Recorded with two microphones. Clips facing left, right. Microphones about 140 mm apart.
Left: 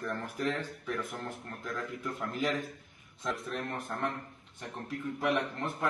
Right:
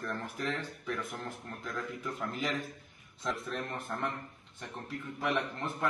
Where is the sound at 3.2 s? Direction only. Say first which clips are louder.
Left 1 dB; 10° left (ahead or behind).